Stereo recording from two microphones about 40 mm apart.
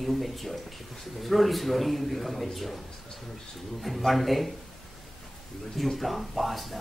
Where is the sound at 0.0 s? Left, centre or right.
Centre.